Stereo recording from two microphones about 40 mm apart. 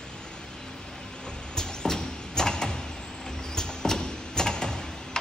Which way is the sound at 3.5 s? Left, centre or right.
Centre.